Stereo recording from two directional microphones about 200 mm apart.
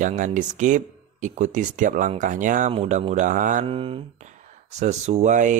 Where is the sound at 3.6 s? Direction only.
25° right (ahead or behind).